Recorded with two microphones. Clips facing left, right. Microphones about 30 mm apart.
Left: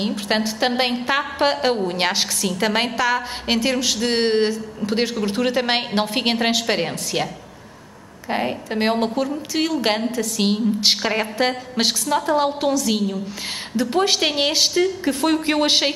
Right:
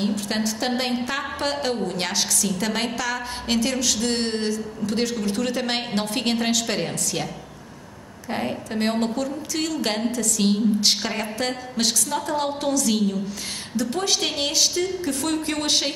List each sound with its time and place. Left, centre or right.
0.0 s a woman's voice: left
8.3 s a woman's voice: left
13.7 s a woman's voice: left